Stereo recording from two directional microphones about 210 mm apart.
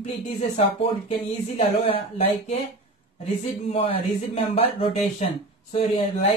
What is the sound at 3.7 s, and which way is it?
Speech, 30° left (ahead or behind).